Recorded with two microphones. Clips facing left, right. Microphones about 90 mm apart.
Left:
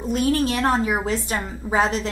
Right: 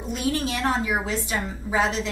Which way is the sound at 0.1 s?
45° left (ahead or behind).